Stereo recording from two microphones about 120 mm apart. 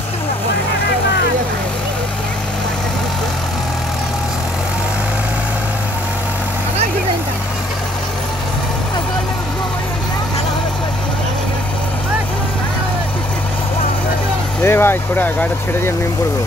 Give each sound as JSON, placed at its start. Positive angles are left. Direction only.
{"t": 14.6, "sound": "speech", "side_deg": 20}